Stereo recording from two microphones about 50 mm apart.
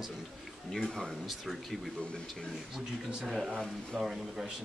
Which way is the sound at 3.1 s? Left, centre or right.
Centre.